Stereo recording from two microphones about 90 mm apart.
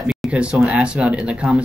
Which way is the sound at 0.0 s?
5° right (ahead or behind).